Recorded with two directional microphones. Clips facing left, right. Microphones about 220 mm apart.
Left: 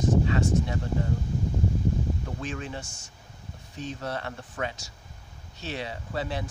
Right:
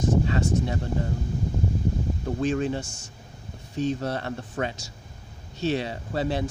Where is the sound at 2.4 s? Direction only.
35° right (ahead or behind).